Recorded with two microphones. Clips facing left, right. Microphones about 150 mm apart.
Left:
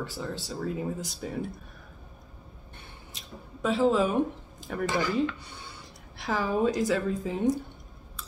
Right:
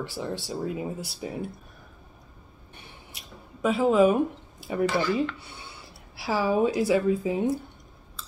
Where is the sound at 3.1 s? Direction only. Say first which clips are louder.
Left 1 dB; 10° right (ahead or behind).